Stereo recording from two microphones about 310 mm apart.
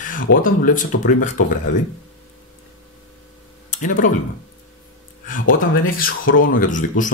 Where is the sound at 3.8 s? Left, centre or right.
Left.